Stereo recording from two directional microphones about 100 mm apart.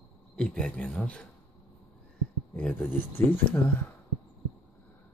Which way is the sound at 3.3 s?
20° left (ahead or behind).